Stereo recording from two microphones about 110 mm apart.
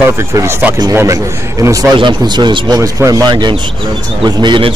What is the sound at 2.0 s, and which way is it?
A man's voice, 45° right (ahead or behind).